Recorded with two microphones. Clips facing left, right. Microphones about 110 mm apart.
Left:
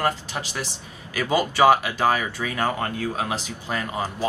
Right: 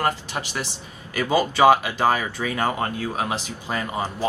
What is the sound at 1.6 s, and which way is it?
Speech, 15° right (ahead or behind).